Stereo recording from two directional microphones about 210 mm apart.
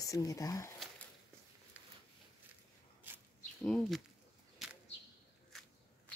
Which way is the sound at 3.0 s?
10° right (ahead or behind).